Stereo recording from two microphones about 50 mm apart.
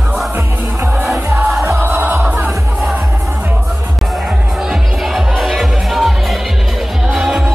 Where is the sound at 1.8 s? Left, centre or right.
Right.